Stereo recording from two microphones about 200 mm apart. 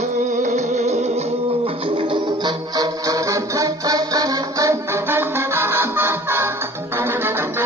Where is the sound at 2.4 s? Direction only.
20° right (ahead or behind).